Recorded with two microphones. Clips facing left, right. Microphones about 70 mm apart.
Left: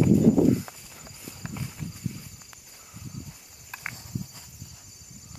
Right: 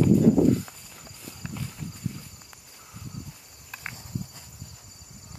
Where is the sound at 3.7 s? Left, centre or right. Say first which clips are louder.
Left 1 dB; centre.